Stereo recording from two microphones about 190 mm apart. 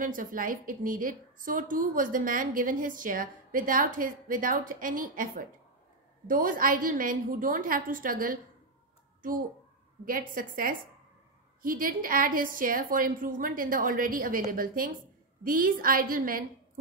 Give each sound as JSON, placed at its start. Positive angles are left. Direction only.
{"t": 0.0, "sound": "a woman's voice", "side_deg": -45}